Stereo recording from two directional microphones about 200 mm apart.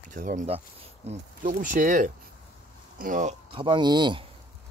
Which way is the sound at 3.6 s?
20° right (ahead or behind).